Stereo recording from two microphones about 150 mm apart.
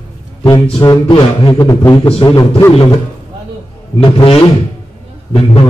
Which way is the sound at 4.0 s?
35° left (ahead or behind).